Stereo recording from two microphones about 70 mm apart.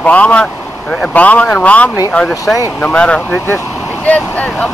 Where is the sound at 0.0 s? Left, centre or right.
Left.